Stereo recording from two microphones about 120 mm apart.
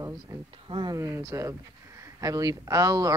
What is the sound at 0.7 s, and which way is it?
Speech, 40° right (ahead or behind).